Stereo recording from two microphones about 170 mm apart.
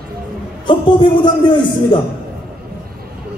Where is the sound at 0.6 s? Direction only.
30° left (ahead or behind).